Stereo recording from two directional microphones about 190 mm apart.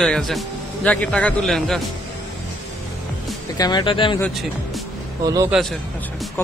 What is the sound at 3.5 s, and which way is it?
Speech, 20° left (ahead or behind).